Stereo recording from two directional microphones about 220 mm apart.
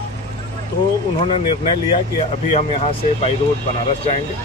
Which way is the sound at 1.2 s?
25° left (ahead or behind).